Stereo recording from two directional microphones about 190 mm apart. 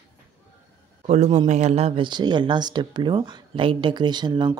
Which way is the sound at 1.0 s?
35° right (ahead or behind).